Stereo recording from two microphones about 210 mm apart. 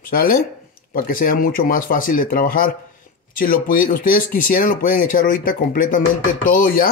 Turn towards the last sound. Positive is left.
turn(degrees=45)  # may be behind; listen again after turning